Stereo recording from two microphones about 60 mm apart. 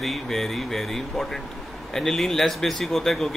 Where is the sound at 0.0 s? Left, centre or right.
Centre.